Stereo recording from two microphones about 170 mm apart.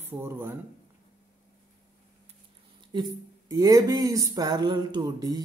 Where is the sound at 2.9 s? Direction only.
25° right (ahead or behind).